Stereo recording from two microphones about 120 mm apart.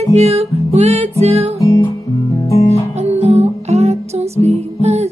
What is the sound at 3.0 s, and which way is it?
Music, 65° right (ahead or behind).